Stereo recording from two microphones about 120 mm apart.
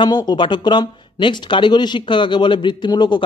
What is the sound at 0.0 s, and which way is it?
Speech, 35° left (ahead or behind).